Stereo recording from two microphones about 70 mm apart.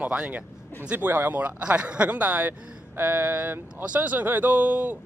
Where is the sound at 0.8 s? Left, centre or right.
Right.